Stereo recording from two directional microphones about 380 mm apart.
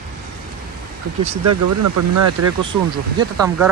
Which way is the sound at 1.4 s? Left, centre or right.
Right.